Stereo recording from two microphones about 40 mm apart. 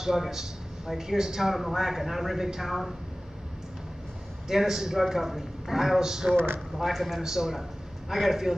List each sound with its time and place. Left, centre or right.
0.0 s a man's voice: centre
4.5 s a man's voice: centre
6.3 s speech: right
6.8 s a man's voice: centre